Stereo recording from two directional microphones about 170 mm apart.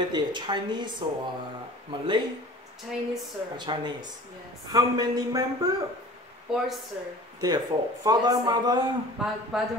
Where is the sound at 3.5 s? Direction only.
25° right (ahead or behind).